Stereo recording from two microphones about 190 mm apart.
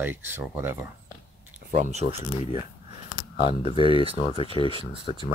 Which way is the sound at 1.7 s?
35° right (ahead or behind).